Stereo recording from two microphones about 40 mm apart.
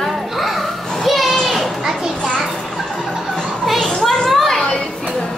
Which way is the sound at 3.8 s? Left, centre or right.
Centre.